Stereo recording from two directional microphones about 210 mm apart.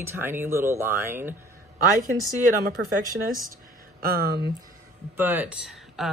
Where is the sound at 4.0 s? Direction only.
45° right (ahead or behind).